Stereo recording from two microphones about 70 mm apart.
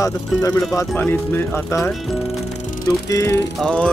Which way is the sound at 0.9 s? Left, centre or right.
Left.